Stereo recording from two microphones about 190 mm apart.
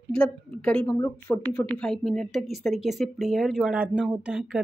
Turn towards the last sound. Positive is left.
turn(degrees=-5)  # may be behind; listen again after turning